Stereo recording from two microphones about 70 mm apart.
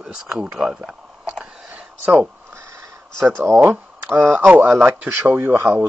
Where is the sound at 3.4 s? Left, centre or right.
Right.